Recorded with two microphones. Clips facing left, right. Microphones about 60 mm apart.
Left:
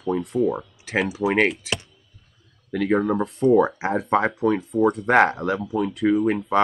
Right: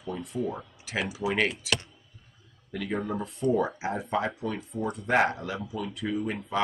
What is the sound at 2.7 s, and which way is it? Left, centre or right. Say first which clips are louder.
Speech: left 10 dB; left.